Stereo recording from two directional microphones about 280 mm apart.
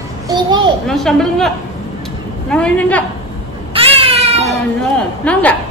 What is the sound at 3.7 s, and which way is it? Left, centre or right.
Baby cry, centre.